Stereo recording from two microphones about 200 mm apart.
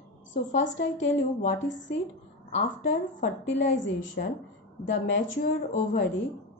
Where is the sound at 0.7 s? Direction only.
70° left (ahead or behind).